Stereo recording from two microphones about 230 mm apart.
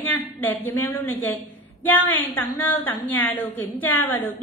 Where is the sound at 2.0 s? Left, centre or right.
Left.